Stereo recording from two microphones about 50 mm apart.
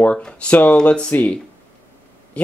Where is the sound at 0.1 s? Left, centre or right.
Left.